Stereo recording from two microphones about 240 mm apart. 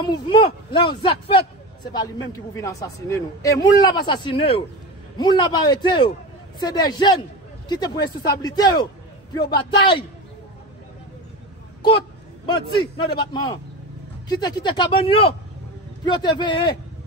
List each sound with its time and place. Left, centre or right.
0.0 s a man's voice: centre
12.4 s a man's voice: centre